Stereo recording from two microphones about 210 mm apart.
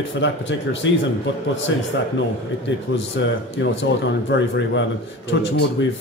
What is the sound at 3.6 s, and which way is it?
Speech, 60° left (ahead or behind).